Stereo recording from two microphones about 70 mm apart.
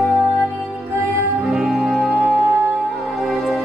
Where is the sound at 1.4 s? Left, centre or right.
Centre.